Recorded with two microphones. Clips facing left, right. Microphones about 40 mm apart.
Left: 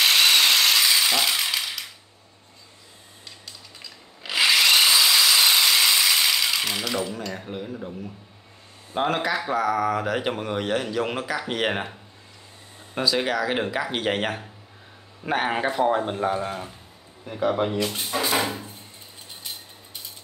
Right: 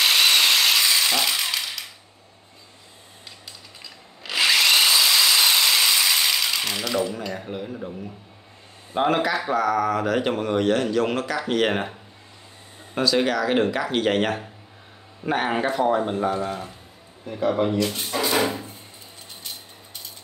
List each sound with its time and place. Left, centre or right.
0.0 s a sound: centre
4.2 s tools: centre
8.9 s speech: centre
12.9 s a man's voice: centre